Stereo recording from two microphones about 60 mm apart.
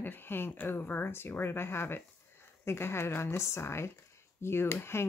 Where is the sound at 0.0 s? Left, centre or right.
Left.